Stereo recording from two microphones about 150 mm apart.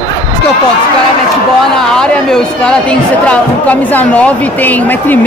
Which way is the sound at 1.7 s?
5° left (ahead or behind).